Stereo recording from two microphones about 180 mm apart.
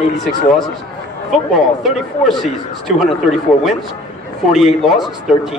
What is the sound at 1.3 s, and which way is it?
A man's voice, centre (ahead or behind).